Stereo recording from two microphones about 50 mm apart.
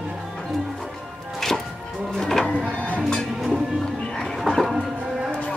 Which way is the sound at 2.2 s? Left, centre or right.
Centre.